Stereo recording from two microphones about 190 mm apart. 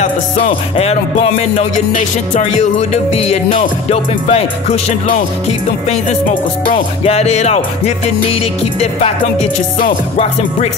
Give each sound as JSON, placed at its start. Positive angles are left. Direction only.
{"t": 0.5, "sound": "music", "side_deg": 30}
{"t": 7.1, "sound": "music", "side_deg": 35}